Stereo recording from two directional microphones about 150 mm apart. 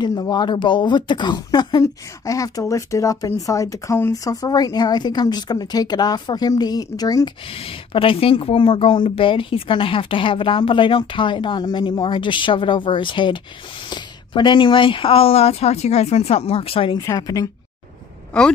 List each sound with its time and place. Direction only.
0.0 s speech: 25° left (ahead or behind)
7.4 s a woman's voice: 40° left (ahead or behind)
17.0 s speech: 25° left (ahead or behind)